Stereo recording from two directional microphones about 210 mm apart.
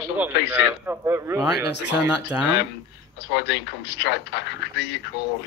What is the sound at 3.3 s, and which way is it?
Speech, 55° left (ahead or behind).